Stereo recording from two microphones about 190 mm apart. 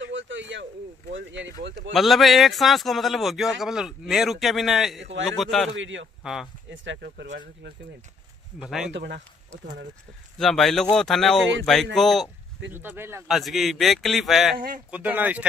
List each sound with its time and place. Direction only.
0.0 s a sound: 80° right
1.1 s speech: 75° right (ahead or behind)
2.0 s a man's voice: centre (ahead or behind)
5.8 s a man's voice: 80° right
6.2 s a man's voice: centre (ahead or behind)
6.7 s speech: 75° right (ahead or behind)
8.5 s a man's voice: centre (ahead or behind)
8.9 s speech: 65° right (ahead or behind)
10.4 s a man's voice: centre (ahead or behind)
12.7 s speech: 10° right (ahead or behind)
13.3 s a man's voice: centre (ahead or behind)